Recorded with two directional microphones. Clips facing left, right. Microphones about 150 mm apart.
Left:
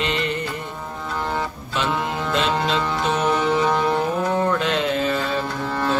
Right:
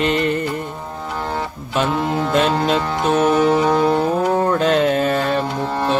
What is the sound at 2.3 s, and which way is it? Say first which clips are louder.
Music: right 4 dB; 45° right (ahead or behind).